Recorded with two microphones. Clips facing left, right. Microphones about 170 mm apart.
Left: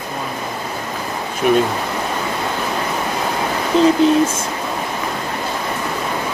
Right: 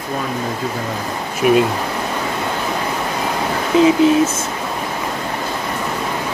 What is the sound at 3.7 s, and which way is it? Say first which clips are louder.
Speech: right 1 dB; 5° right (ahead or behind).